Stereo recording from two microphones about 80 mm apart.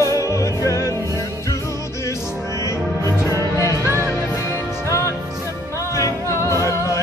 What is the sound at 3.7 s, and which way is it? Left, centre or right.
Music, right.